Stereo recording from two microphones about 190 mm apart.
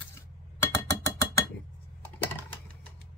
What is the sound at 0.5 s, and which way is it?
Glass, 15° left (ahead or behind).